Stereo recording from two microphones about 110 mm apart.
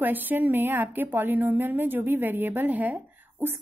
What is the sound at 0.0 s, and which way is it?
A woman's voice, 15° right (ahead or behind).